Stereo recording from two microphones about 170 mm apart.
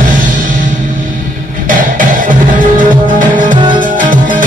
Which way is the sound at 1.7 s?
50° right (ahead or behind).